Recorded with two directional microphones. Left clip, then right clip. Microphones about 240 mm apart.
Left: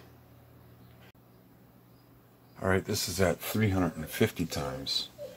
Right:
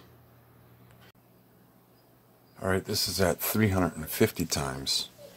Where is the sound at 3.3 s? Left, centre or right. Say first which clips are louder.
Right 3 dB; right.